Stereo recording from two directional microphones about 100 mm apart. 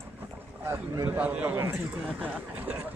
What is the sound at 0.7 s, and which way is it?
A man's voice, 20° right (ahead or behind).